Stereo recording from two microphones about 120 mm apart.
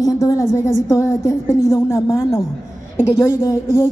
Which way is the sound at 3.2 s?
25° left (ahead or behind).